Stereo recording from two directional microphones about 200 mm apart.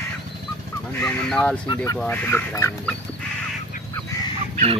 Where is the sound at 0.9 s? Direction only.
10° left (ahead or behind).